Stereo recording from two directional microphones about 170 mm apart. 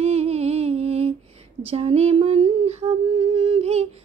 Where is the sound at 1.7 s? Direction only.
35° right (ahead or behind).